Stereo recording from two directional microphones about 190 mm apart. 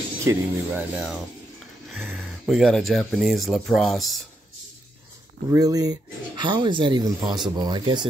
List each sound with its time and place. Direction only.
0.2 s speech: 10° right (ahead or behind)
5.5 s speech: 20° right (ahead or behind)